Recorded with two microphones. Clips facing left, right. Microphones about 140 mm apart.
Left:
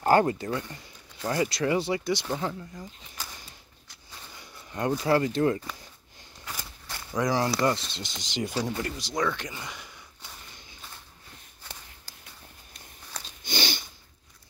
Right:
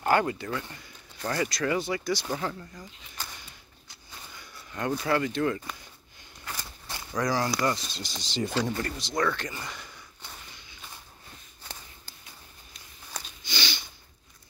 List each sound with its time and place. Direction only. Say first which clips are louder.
0.0 s speech: left 3 dB; 35° left (ahead or behind)
2.3 s speech: left 1 dB; 10° left (ahead or behind)
4.4 s speech: left 3 dB; 25° left (ahead or behind)
7.2 s speech: left 2 dB; 20° left (ahead or behind)
13.4 s a sound: left 5 dB; 50° left (ahead or behind)